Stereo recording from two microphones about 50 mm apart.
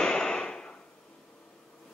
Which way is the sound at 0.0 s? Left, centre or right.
Centre.